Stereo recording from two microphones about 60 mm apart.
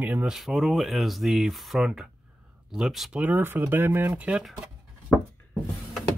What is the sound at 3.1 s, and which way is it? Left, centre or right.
Speech, right.